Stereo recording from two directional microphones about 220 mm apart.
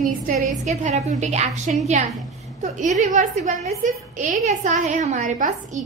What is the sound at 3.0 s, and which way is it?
A woman's voice, 35° right (ahead or behind).